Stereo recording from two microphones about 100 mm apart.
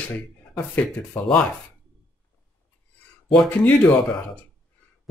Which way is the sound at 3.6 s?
15° left (ahead or behind).